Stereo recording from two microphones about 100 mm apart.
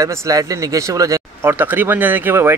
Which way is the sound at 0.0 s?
35° right (ahead or behind).